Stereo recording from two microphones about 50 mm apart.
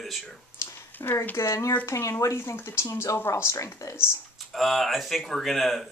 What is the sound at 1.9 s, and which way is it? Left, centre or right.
A woman's voice, left.